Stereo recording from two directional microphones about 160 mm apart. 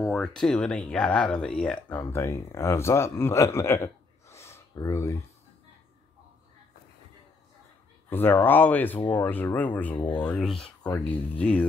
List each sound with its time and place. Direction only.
0.0 s speech: centre (ahead or behind)
2.0 s a man's voice: 20° left (ahead or behind)
8.1 s speech: 15° left (ahead or behind)
9.9 s speech: 25° left (ahead or behind)
10.2 s speech: 5° left (ahead or behind)